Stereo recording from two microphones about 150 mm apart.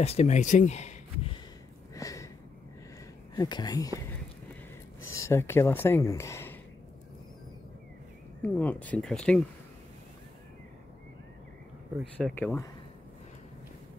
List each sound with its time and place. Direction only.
0.0 s speech: 45° left (ahead or behind)
2.0 s sniff: 20° left (ahead or behind)
3.3 s speech: 25° left (ahead or behind)
5.0 s speech: 20° left (ahead or behind)
8.4 s speech: 10° left (ahead or behind)
12.0 s speech: 5° left (ahead or behind)